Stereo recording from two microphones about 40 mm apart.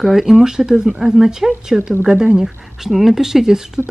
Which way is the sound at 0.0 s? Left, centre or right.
Centre.